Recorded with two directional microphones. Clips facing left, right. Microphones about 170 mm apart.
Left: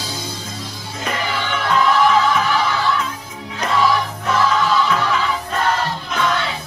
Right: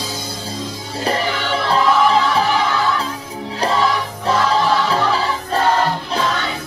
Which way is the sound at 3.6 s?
30° right (ahead or behind).